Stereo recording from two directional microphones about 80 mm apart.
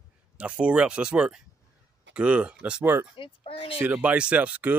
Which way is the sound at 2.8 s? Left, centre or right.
Right.